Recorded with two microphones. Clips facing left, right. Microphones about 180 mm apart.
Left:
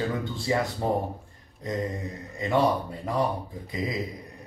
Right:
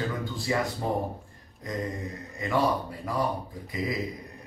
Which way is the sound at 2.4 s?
25° left (ahead or behind).